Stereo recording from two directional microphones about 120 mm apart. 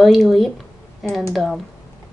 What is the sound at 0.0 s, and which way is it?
Speech, centre (ahead or behind).